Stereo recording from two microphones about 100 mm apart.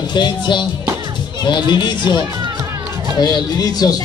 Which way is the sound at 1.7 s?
50° left (ahead or behind).